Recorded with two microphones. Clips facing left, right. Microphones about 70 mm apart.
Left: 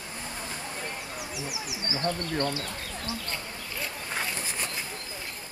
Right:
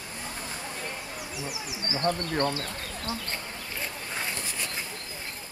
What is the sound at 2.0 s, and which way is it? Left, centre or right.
Speech, right.